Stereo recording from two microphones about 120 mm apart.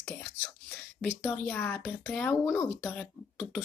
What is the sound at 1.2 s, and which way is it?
Speech, 15° left (ahead or behind).